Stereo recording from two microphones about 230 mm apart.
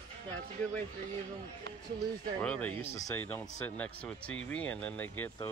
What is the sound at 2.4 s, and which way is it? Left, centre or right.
Speech, centre.